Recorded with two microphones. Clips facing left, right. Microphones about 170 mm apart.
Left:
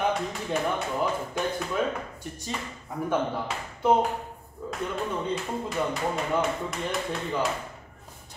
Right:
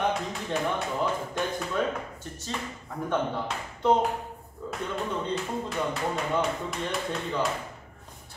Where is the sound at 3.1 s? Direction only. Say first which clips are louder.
Left 1 dB; 5° left (ahead or behind).